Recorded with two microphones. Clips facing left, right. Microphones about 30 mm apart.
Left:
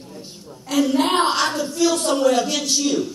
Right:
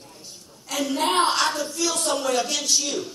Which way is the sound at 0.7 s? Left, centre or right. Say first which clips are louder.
Left 5 dB; left.